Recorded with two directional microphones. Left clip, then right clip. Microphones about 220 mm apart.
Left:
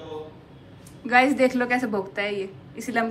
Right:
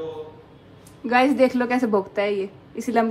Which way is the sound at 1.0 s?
25° right (ahead or behind).